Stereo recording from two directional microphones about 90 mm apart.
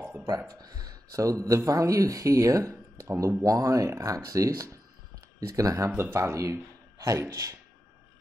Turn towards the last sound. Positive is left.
turn(degrees=-35)  # may be behind; listen again after turning